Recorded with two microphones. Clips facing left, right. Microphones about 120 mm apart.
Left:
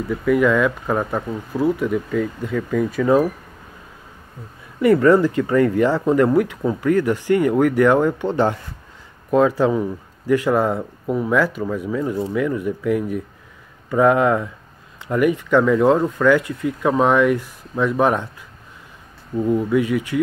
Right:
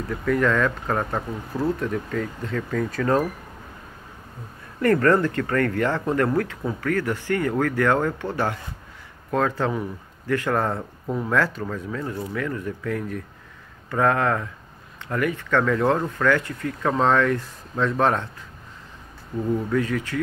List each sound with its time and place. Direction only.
0.1 s speech: 5° left (ahead or behind)
4.8 s speech: 10° left (ahead or behind)
19.4 s speech: 15° left (ahead or behind)